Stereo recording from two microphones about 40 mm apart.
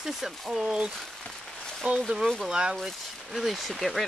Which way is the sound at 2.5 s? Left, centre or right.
Centre.